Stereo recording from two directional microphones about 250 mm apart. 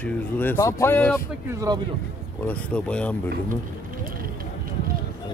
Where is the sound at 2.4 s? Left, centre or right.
Centre.